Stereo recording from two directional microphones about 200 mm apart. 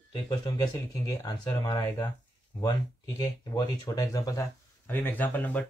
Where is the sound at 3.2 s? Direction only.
20° left (ahead or behind).